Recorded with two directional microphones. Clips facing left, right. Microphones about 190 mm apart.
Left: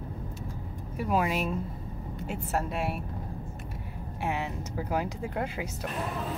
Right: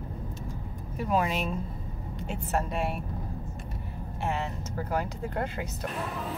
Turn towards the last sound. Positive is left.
turn(degrees=10)  # may be behind; listen again after turning